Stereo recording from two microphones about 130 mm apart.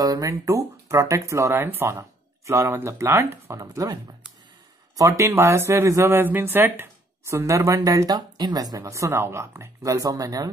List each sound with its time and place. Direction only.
0.0 s speech: 25° right (ahead or behind)